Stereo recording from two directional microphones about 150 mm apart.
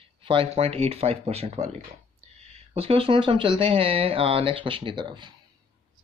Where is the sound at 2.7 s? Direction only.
40° right (ahead or behind).